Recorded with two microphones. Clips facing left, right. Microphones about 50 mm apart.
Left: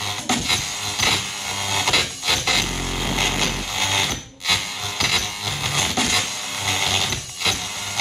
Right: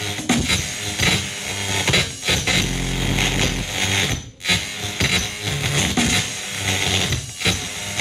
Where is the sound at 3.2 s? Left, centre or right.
Centre.